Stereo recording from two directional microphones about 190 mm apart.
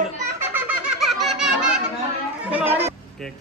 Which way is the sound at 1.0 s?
Centre (ahead or behind).